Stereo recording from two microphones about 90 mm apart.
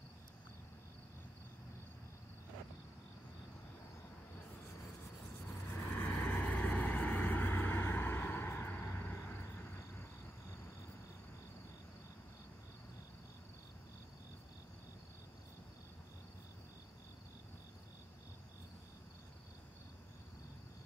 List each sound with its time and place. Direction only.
5.7 s vehicle: 30° left (ahead or behind)